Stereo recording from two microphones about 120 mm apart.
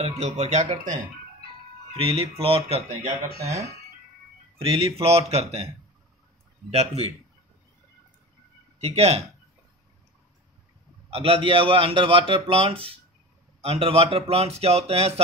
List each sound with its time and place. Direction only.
0.2 s speech: 70° right (ahead or behind)
2.0 s a man's voice: 50° right (ahead or behind)
4.6 s speech: 50° right (ahead or behind)
6.7 s speech: 60° right (ahead or behind)
8.8 s speech: 65° right (ahead or behind)
11.1 s a man's voice: 50° right (ahead or behind)